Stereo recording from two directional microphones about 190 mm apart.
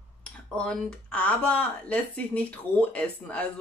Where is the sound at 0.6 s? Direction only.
5° left (ahead or behind).